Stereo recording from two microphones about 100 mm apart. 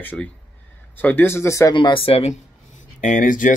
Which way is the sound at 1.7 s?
55° left (ahead or behind).